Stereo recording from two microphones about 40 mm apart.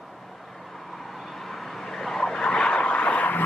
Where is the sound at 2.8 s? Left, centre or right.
Left.